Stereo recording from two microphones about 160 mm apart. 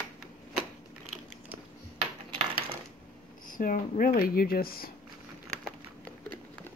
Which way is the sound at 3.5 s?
60° left (ahead or behind).